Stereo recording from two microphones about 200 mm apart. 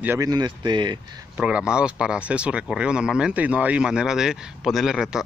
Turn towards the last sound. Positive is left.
turn(degrees=0)  # may be behind; listen again after turning